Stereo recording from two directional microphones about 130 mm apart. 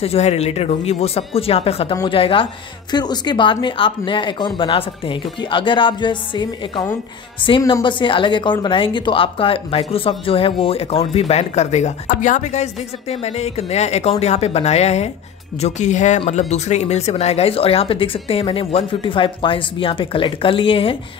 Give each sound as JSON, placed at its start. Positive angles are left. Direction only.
{"t": 0.0, "sound": "a woman's voice", "side_deg": 50}
{"t": 2.9, "sound": "a woman's voice", "side_deg": 35}